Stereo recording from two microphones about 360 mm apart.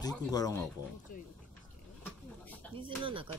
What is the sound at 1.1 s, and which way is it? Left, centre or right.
Speech, left.